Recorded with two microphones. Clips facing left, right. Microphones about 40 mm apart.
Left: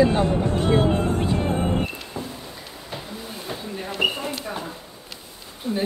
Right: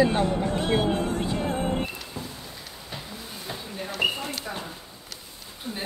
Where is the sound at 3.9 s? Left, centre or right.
Left.